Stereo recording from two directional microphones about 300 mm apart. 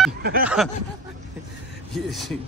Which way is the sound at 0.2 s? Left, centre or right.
Right.